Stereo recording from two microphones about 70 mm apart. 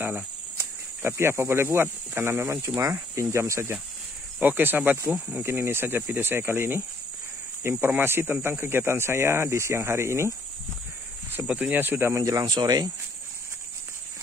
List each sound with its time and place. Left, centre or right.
0.6 s speech: right
4.4 s speech: right
11.4 s speech: centre
11.7 s speech: right
12.3 s speech: right